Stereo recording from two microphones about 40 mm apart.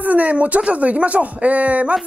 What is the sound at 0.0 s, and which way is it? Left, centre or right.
Speech, right.